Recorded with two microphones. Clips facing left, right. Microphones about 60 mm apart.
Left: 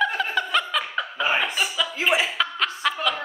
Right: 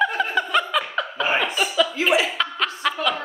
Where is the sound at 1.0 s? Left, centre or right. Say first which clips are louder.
Left 1 dB; centre.